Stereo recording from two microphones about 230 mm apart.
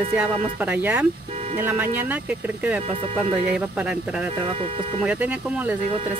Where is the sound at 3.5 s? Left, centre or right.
Centre.